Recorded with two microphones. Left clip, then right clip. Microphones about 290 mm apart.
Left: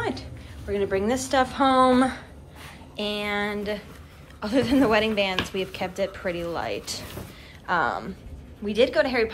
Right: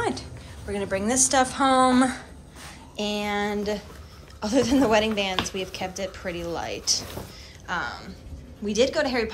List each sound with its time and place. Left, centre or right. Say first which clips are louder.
0.0 s a woman's voice: right 2 dB; centre